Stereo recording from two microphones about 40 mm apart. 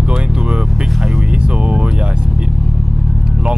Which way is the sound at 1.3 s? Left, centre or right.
Right.